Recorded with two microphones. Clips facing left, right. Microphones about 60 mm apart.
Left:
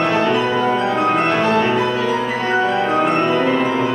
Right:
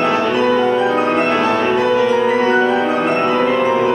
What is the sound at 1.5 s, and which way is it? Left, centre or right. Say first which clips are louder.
Music: right 1 dB; right.